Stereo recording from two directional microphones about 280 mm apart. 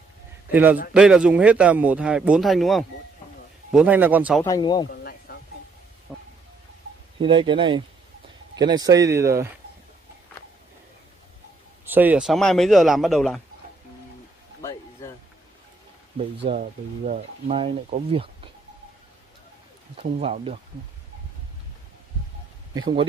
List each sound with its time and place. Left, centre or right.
0.5 s a man's voice: centre
4.4 s speech: centre
5.3 s a sound: left
6.1 s a sound: centre
7.2 s speech: centre
11.8 s a man's voice: centre
16.4 s speech: right
20.0 s speech: right
22.8 s speech: centre